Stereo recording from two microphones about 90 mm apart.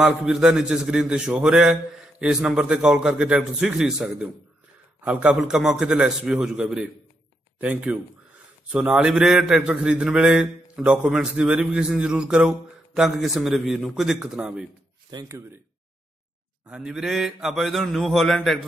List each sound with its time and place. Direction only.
0.2 s a man's voice: 5° right (ahead or behind)
5.0 s a man's voice: 15° right (ahead or behind)
13.8 s mantra: 5° right (ahead or behind)
15.1 s speech: 50° right (ahead or behind)
16.6 s mantra: 10° right (ahead or behind)